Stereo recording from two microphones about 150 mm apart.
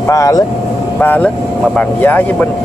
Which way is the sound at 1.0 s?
10° left (ahead or behind).